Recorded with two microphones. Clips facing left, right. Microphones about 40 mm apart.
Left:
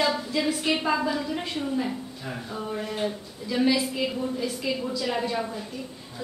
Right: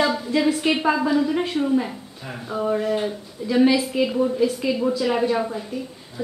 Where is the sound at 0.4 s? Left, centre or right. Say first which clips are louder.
Right 7 dB; centre.